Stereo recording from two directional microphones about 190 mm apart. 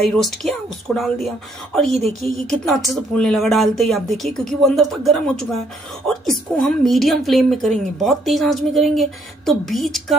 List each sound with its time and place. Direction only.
0.0 s a woman's voice: centre (ahead or behind)
3.2 s a woman's voice: centre (ahead or behind)